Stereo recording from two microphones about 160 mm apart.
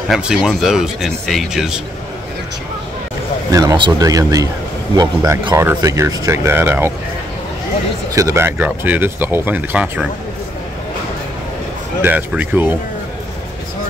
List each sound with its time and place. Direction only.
0.1 s speech: 5° right (ahead or behind)
3.5 s speech: 25° right (ahead or behind)
8.1 s speech: 20° right (ahead or behind)
12.0 s speech: 10° right (ahead or behind)